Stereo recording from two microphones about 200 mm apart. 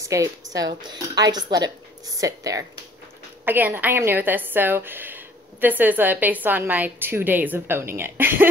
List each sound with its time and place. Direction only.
0.0 s a woman's voice: 15° right (ahead or behind)